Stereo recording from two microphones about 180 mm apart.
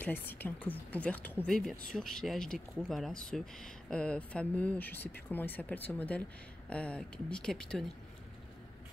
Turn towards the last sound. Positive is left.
turn(degrees=5)  # may be behind; listen again after turning